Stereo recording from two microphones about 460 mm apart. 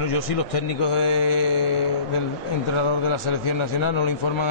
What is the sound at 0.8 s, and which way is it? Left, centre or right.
A man's voice, left.